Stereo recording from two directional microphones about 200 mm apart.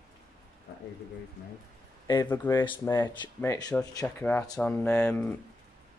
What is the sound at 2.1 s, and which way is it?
Speech, 15° left (ahead or behind).